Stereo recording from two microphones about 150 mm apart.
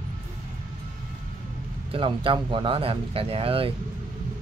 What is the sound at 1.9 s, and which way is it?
Speech, 35° right (ahead or behind).